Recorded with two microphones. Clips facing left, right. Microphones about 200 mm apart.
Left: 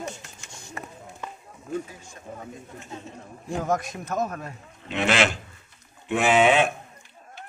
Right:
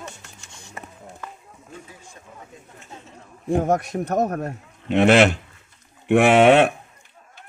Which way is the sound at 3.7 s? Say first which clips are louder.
Right 6 dB; 65° right (ahead or behind).